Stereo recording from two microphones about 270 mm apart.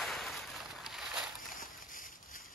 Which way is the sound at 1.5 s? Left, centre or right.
Left.